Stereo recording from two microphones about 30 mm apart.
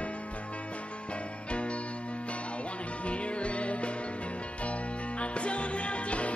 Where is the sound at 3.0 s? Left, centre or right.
Left.